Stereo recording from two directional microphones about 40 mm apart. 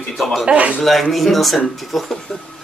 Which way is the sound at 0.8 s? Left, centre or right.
Centre.